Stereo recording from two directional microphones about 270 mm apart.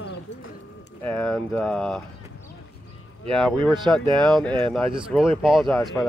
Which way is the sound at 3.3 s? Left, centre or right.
Centre.